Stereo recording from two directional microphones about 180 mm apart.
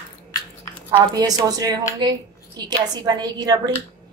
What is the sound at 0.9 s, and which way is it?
A woman's voice, 25° right (ahead or behind).